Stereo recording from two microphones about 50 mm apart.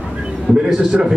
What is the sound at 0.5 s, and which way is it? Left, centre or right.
Speech, centre.